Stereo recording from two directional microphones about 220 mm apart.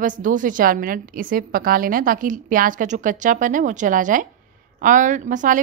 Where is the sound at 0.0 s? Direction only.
35° right (ahead or behind).